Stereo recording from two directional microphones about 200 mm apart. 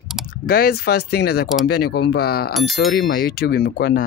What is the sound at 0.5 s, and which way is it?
Speech, 50° left (ahead or behind).